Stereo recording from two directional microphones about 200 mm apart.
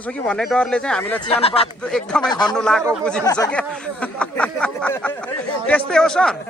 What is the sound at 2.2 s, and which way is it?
Speech, 20° left (ahead or behind).